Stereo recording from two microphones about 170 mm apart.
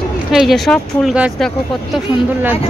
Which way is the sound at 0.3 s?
Centre (ahead or behind).